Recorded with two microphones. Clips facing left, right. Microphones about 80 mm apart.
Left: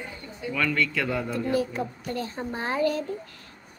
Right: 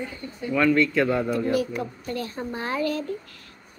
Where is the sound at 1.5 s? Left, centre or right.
Left.